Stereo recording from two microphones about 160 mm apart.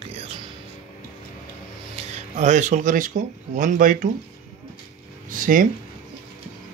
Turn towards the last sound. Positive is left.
turn(degrees=-60)  # may be behind; listen again after turning